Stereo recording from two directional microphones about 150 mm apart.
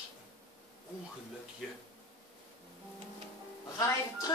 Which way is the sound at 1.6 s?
Centre (ahead or behind).